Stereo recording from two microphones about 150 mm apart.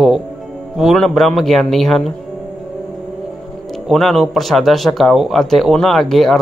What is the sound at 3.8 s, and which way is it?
A man's voice, centre (ahead or behind).